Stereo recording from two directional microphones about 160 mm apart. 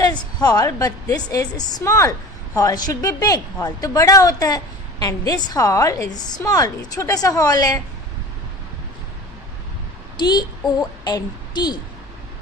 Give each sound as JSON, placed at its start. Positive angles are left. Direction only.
{"t": 0.0, "sound": "a woman's voice", "side_deg": 25}
{"t": 10.1, "sound": "child singing", "side_deg": 25}
{"t": 11.1, "sound": "a woman's voice", "side_deg": 25}